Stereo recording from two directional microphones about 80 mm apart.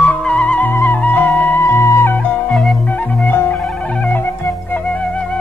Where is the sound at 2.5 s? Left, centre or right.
Centre.